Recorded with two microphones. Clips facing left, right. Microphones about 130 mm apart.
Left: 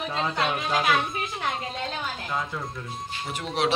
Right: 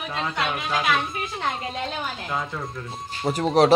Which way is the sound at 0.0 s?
25° left (ahead or behind).